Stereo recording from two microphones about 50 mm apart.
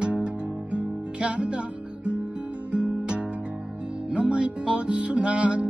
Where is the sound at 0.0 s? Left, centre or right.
Right.